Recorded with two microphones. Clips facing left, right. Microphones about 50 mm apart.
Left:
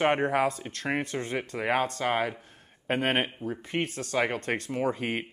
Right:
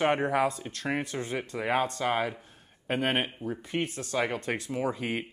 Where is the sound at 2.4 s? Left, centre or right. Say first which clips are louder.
Left 1 dB; left.